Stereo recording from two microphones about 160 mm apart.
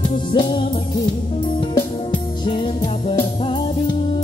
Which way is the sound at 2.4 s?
30° left (ahead or behind).